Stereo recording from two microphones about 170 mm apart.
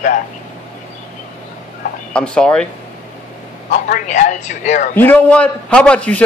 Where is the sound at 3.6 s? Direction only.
50° left (ahead or behind).